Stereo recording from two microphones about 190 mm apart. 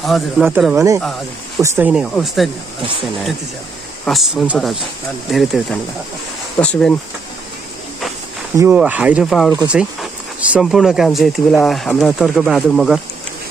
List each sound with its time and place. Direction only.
0.0 s speech: centre (ahead or behind)
0.7 s speech: 15° right (ahead or behind)
4.0 s speech: centre (ahead or behind)
8.5 s speech: 10° right (ahead or behind)